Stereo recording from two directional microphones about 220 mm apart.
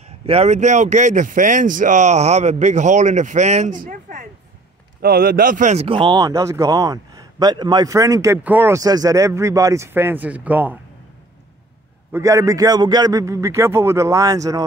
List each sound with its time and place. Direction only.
0.3 s speech: 30° right (ahead or behind); by 10.8 s 10° right (ahead or behind)
12.1 s speech: 15° right (ahead or behind)